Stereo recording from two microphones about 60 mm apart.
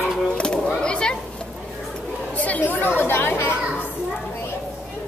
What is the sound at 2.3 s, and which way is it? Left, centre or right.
Speech, left.